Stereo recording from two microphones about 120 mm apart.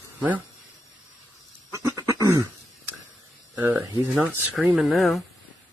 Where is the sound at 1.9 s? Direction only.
25° right (ahead or behind).